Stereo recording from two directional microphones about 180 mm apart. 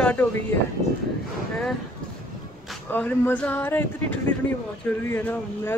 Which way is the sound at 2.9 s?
10° left (ahead or behind).